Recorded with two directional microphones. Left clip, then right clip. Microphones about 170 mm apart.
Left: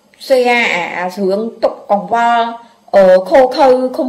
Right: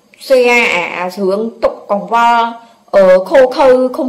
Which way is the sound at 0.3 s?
10° right (ahead or behind).